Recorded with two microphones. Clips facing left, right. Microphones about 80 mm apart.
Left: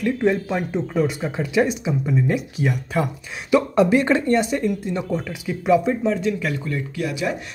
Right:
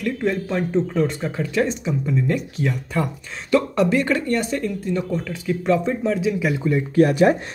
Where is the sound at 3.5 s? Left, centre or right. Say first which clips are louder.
Left 2 dB; centre.